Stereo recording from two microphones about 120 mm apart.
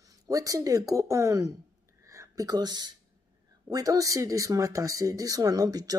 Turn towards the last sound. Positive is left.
turn(degrees=-30)  # may be behind; listen again after turning